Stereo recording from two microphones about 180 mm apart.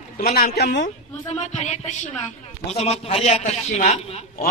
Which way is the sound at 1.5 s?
40° left (ahead or behind).